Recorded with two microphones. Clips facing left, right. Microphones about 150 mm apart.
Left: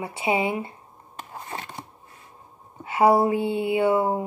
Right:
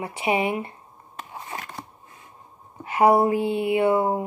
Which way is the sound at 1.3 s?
40° left (ahead or behind).